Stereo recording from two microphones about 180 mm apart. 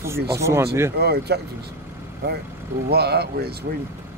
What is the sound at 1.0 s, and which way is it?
Speech, 60° right (ahead or behind).